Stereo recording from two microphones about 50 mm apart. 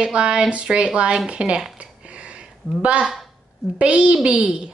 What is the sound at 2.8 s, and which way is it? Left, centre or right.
Speech, right.